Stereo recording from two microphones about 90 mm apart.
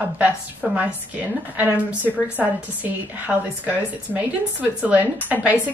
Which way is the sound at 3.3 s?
5° right (ahead or behind).